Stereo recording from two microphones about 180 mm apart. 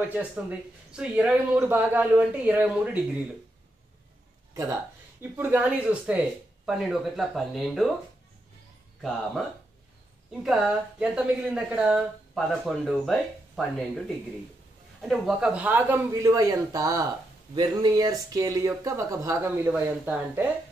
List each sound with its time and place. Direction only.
0.0 s speech: 10° right (ahead or behind)
5.4 s speech: 10° right (ahead or behind)
10.4 s speech: 5° right (ahead or behind)